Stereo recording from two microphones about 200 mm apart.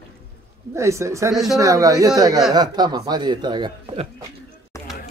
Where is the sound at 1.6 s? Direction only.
15° right (ahead or behind).